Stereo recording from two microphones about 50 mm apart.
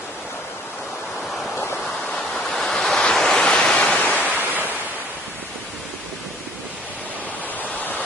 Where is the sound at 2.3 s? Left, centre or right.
Centre.